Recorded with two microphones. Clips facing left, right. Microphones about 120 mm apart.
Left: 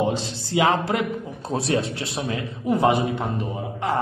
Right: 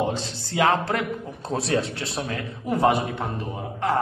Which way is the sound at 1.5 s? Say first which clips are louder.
Left 1 dB; 15° left (ahead or behind).